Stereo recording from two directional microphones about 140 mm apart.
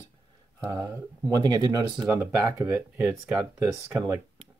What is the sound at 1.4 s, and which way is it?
Speech, 30° right (ahead or behind).